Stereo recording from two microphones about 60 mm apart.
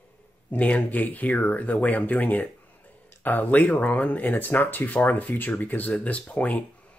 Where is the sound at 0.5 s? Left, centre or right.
Left.